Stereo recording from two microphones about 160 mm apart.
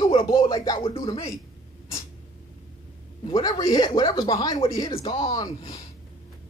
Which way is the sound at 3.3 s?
25° left (ahead or behind).